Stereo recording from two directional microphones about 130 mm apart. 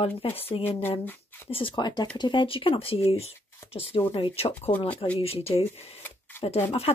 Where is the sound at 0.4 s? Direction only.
45° left (ahead or behind).